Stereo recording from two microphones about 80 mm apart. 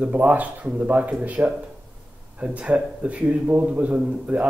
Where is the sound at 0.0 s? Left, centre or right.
Centre.